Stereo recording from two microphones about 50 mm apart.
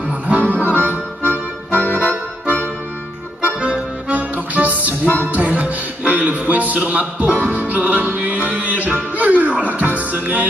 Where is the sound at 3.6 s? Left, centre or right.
Right.